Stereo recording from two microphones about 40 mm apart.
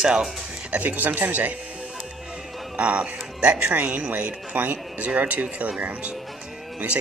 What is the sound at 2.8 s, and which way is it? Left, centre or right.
Speech, right.